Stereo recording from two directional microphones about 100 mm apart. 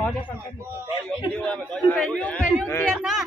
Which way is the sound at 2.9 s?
Centre (ahead or behind).